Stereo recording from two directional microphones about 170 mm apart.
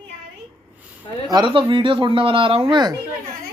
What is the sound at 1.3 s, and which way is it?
Speech, 30° right (ahead or behind).